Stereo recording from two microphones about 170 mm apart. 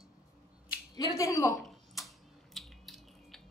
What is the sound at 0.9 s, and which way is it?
Speech, 20° left (ahead or behind).